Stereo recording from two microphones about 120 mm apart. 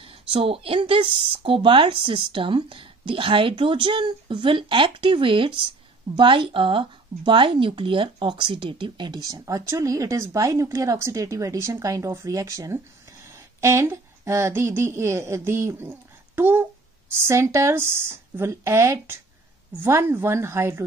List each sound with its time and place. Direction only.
0.0 s speech: 50° right (ahead or behind); by 20.8 s 20° right (ahead or behind)